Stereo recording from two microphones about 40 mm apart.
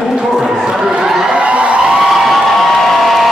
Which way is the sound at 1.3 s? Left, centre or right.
Right.